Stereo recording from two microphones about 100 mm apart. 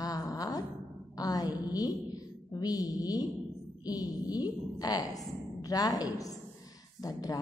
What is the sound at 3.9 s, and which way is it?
A woman's voice, 40° left (ahead or behind).